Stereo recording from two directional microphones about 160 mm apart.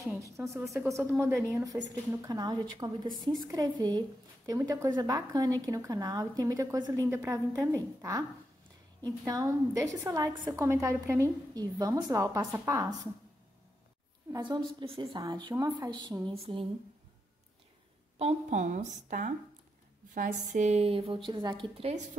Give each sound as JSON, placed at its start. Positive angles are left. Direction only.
{"t": 0.4, "sound": "a woman's voice", "side_deg": -10}
{"t": 14.3, "sound": "a woman's voice", "side_deg": -30}
{"t": 18.2, "sound": "a woman's voice", "side_deg": -50}